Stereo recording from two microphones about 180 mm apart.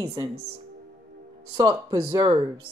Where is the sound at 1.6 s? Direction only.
20° right (ahead or behind).